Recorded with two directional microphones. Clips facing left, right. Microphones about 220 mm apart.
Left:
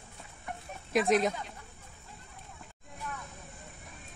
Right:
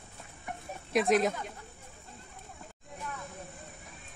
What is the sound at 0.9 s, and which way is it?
Speech, centre (ahead or behind).